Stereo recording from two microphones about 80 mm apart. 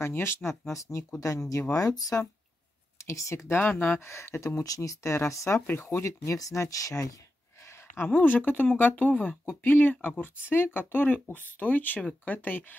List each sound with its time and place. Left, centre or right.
0.0 s speech: left
1.5 s speech: left
3.1 s speech: left
3.5 s speech: centre; by 7.1 s left
7.6 s a sound: left
8.1 s speech: left